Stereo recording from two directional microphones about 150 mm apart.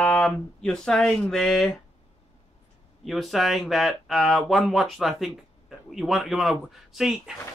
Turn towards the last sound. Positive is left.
turn(degrees=-5)  # may be behind; listen again after turning